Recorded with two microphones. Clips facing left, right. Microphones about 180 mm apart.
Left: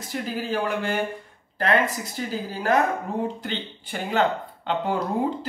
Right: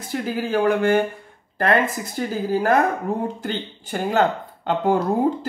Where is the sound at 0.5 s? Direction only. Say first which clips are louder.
Right 9 dB; 55° right (ahead or behind).